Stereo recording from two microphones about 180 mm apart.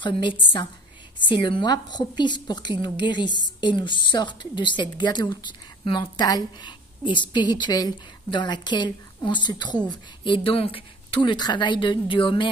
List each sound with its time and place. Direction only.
0.0 s a woman's voice: 25° left (ahead or behind)